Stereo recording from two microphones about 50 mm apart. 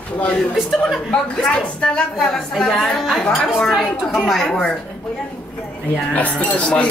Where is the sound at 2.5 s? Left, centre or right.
Centre.